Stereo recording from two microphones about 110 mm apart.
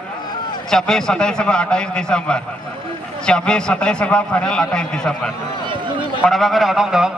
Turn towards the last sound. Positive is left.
turn(degrees=-5)  # may be behind; listen again after turning